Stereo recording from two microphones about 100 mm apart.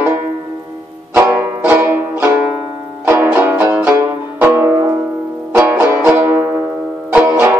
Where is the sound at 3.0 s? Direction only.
20° right (ahead or behind).